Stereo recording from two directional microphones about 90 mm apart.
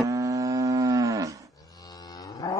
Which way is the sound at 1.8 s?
45° left (ahead or behind).